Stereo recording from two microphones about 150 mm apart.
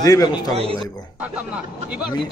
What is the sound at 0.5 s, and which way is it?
Speech, 40° right (ahead or behind).